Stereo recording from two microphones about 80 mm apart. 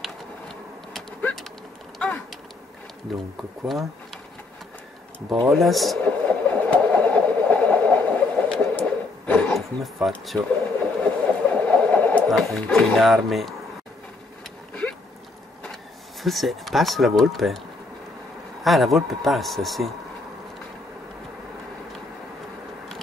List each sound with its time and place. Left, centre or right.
0.0 s a sound: centre
2.0 s typing: centre
3.1 s speech: centre
5.4 s speech: centre
6.0 s engine: centre
8.5 s a sound: centre
9.5 s speech: centre
11.0 s a sound: centre
12.3 s speech: centre
14.8 s a sound: centre
15.6 s speech: centre
18.6 s speech: centre